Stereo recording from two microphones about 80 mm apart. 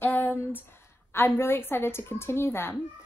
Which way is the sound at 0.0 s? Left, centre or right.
Left.